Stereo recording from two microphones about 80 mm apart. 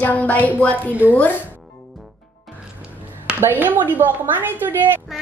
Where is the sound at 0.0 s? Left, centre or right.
Centre.